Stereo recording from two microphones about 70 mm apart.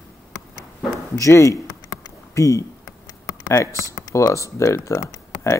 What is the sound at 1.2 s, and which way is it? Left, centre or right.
Speech, left.